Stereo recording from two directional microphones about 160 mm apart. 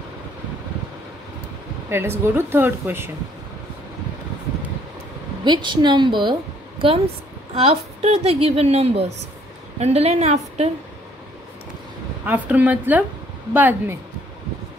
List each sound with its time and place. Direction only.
1.9 s speech: 15° right (ahead or behind)
5.4 s a woman's voice: 30° right (ahead or behind)
7.5 s a woman's voice: 40° right (ahead or behind)
12.3 s speech: 10° right (ahead or behind)